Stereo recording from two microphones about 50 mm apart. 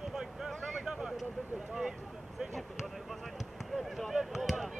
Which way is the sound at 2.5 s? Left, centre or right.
Centre.